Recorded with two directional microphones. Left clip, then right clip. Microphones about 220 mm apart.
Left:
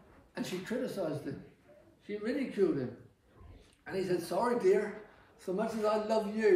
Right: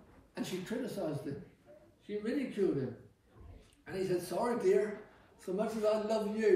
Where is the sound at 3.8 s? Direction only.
15° left (ahead or behind).